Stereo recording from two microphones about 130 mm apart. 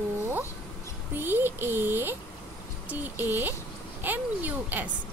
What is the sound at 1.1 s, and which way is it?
Speech, 15° right (ahead or behind).